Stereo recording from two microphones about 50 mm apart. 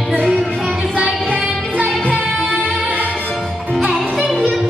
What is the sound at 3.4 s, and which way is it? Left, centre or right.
Music, centre.